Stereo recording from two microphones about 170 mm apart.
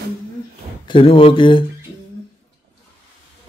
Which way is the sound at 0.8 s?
30° left (ahead or behind).